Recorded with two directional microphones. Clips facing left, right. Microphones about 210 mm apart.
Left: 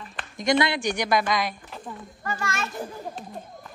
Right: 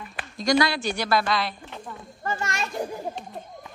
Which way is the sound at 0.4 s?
20° left (ahead or behind).